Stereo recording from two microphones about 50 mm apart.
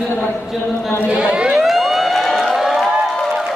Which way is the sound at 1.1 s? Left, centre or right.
Right.